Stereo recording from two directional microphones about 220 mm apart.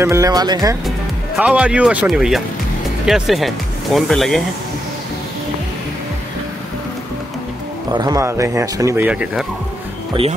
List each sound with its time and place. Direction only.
0.0 s speech: 15° right (ahead or behind)
0.8 s speech: 5° right (ahead or behind)
7.9 s speech: 15° right (ahead or behind)